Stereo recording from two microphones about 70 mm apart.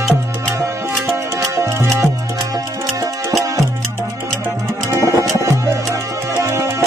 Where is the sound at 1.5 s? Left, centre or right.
Right.